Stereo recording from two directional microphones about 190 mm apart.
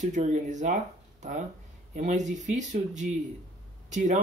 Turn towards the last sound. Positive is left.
turn(degrees=-40)  # may be behind; listen again after turning